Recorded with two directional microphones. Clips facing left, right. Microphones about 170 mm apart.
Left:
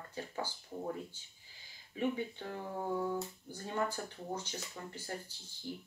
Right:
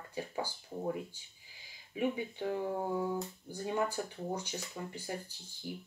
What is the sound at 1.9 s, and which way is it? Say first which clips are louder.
Speech: right 1 dB; 15° right (ahead or behind).